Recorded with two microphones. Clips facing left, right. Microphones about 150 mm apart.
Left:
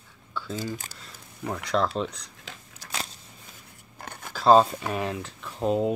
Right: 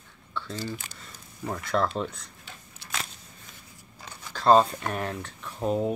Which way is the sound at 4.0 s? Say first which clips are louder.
Left 4 dB; 55° left (ahead or behind).